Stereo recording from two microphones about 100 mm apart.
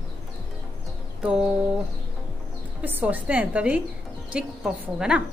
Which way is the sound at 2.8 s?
15° right (ahead or behind).